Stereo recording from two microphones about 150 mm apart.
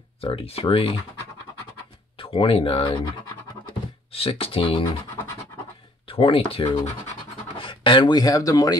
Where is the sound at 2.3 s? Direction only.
40° left (ahead or behind).